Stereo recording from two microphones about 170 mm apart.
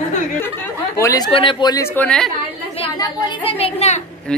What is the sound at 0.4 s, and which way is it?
Speech, 15° left (ahead or behind).